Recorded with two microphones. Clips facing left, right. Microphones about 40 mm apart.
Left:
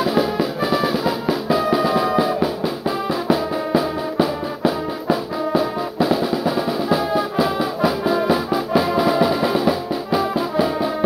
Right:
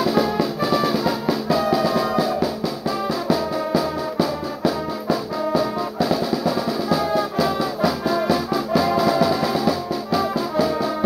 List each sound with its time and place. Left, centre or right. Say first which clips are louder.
0.0 s music: left 1 dB; centre